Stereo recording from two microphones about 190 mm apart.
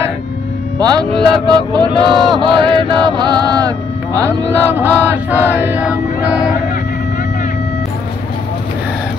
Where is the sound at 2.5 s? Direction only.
25° right (ahead or behind); by 5.9 s 10° right (ahead or behind).